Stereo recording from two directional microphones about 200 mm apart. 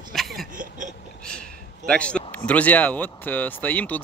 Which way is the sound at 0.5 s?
40° right (ahead or behind).